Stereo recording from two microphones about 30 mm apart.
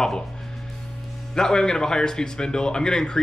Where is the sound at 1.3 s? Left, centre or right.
Left.